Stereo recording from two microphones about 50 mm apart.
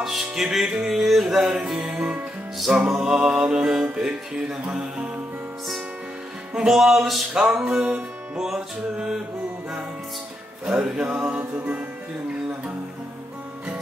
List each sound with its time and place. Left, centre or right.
0.0 s music: centre
2.5 s music: centre
3.0 s music: centre
6.5 s music: centre
7.3 s music: right
10.6 s music: centre
11.1 s music: right